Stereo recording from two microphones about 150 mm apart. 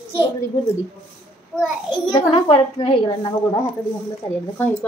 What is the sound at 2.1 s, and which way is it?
A woman's voice, 35° left (ahead or behind).